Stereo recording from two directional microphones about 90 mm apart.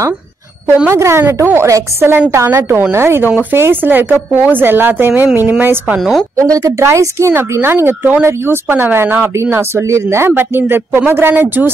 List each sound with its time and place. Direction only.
0.8 s a woman's voice: 30° right (ahead or behind)
5.9 s a woman's voice: centre (ahead or behind)
6.3 s speech: 40° right (ahead or behind); by 11.7 s 20° right (ahead or behind)